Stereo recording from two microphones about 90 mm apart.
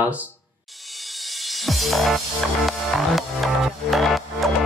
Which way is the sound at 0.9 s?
Centre (ahead or behind).